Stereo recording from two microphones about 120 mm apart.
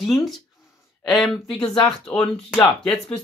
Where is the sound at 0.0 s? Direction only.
Centre (ahead or behind).